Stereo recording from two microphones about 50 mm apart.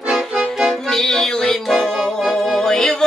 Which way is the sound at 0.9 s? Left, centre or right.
Centre.